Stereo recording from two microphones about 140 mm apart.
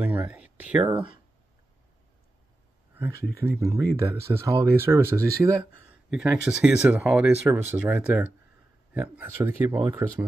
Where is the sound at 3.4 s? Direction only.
20° right (ahead or behind).